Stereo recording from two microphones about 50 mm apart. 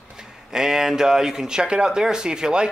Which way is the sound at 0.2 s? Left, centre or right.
Centre.